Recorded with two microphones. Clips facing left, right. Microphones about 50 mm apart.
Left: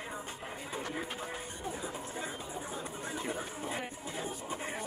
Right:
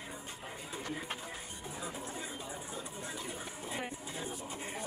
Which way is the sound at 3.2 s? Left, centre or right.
Left.